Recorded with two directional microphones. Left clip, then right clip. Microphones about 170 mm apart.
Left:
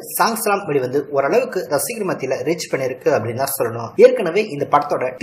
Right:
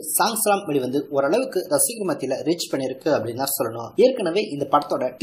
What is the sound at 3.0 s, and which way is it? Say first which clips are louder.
Speech: left 4 dB; 25° right (ahead or behind).